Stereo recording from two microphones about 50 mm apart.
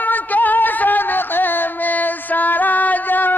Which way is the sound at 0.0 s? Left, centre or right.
Left.